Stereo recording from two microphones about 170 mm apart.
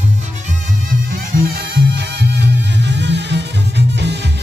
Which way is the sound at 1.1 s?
60° right (ahead or behind).